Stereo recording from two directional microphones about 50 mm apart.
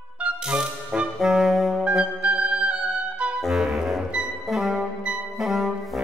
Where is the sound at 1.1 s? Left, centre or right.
Centre.